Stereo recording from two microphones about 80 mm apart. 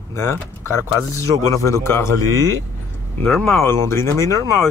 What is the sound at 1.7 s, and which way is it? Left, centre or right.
Speech, left.